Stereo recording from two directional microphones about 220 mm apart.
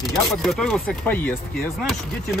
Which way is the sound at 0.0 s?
Centre (ahead or behind).